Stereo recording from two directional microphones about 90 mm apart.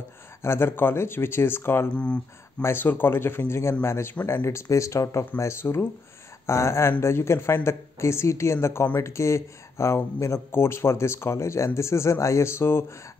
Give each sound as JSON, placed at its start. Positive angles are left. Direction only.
{"t": 0.4, "sound": "speech", "side_deg": 25}